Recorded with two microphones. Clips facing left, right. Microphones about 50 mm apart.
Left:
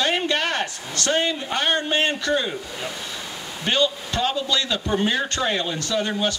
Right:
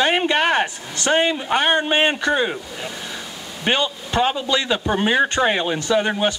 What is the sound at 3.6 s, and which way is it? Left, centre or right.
Speech, right.